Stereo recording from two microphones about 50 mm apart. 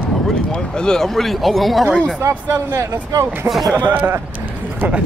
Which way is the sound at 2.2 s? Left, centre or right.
Right.